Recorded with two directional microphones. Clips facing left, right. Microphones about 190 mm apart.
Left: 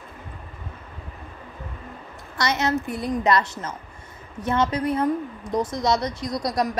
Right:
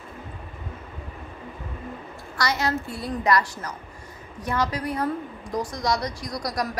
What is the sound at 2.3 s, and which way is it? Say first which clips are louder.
A woman's voice: left 2 dB; 20° left (ahead or behind).